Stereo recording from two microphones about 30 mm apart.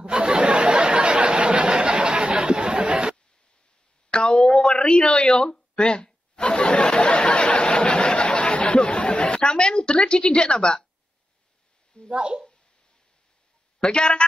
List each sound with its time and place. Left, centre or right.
0.1 s a sound: right
1.8 s chatter: right
2.0 s chatter: right
4.1 s a sound: left
4.9 s speech: left
6.0 s a sound: left
8.8 s a woman's voice: left
12.1 s speech: right
13.9 s speech: left